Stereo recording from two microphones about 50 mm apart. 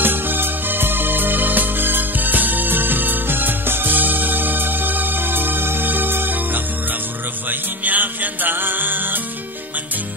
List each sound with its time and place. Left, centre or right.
0.0 s music: right